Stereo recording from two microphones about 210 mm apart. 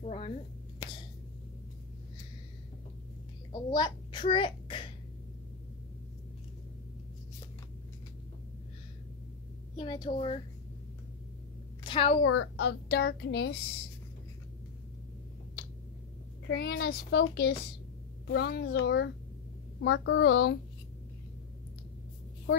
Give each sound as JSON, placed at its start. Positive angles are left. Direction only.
{"t": 0.0, "sound": "a sound", "side_deg": 30}
{"t": 3.7, "sound": "a child's voice", "side_deg": 20}
{"t": 9.8, "sound": "a woman's voice", "side_deg": 20}
{"t": 11.8, "sound": "a woman's voice", "side_deg": 25}
{"t": 12.2, "sound": "a woman's voice", "side_deg": 70}
{"t": 12.8, "sound": "a child's voice", "side_deg": 50}
{"t": 16.4, "sound": "a child's voice", "side_deg": 50}